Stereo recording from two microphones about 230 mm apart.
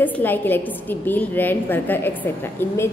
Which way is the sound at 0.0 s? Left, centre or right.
Centre.